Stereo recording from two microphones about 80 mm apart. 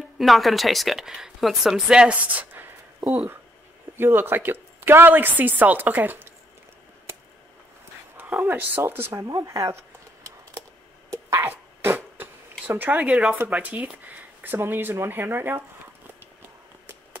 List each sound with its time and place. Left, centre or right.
0.2 s a woman's voice: centre; by 6.2 s right
8.5 s a woman's voice: right
9.3 s speech: right
11.3 s dog: right
13.1 s a woman's voice: centre; by 15.6 s right